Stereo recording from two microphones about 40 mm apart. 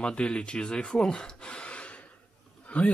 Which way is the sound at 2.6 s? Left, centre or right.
Left.